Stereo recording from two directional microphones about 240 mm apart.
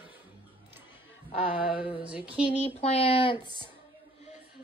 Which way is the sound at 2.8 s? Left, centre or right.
Left.